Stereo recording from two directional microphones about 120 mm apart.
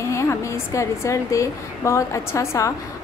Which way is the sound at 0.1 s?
25° left (ahead or behind).